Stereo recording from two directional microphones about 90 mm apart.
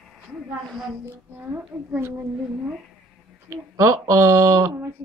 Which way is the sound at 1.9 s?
25° right (ahead or behind).